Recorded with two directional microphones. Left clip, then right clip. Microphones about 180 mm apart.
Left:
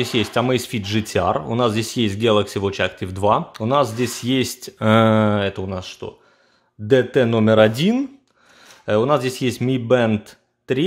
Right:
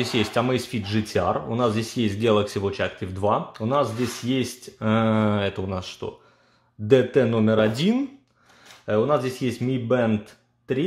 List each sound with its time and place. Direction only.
0.0 s speech: 30° left (ahead or behind)
8.8 s speech: 40° left (ahead or behind)